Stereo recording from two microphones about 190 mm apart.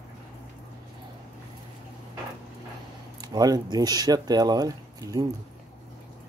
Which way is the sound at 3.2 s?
20° right (ahead or behind).